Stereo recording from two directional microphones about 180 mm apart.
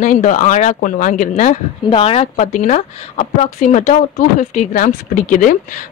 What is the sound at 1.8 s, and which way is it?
A woman's voice, 30° left (ahead or behind).